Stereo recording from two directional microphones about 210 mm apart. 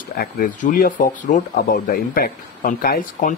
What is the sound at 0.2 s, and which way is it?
Speech, 40° left (ahead or behind).